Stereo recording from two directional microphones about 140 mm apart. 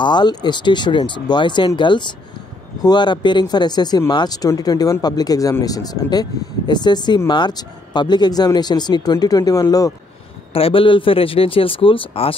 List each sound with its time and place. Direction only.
0.0 s a man's voice: 30° left (ahead or behind)
10.5 s a man's voice: 40° left (ahead or behind)